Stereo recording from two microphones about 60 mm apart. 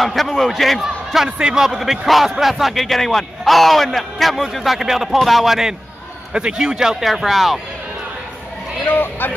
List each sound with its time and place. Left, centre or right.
0.0 s a man's voice: centre
8.8 s speech: left